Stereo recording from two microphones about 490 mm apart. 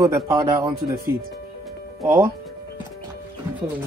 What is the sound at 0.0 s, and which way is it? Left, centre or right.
Speech, centre.